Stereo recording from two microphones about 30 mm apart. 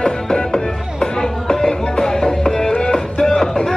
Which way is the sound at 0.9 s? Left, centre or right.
Centre.